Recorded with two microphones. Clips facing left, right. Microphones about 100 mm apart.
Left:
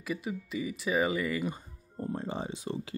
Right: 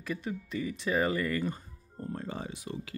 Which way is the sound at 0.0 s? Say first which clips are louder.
Left 1 dB; 5° left (ahead or behind).